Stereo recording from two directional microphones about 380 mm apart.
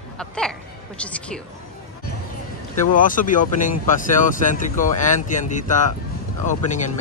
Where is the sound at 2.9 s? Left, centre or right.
Left.